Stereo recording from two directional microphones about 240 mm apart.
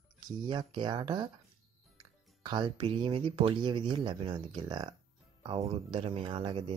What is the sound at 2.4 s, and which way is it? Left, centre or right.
Speech, centre.